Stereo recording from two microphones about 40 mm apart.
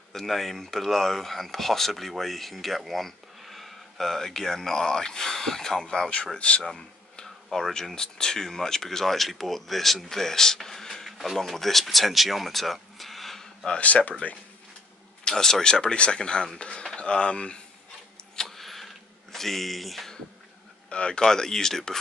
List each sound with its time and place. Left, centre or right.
0.1 s speech: centre
6.0 s speech: left
6.6 s a sound: centre
7.5 s speech: centre
11.1 s a sound: centre
11.3 s speech: centre
13.7 s speech: left
15.3 s speech: centre
18.3 s a sound: centre
19.3 s speech: centre
20.9 s speech: left
21.2 s speech: centre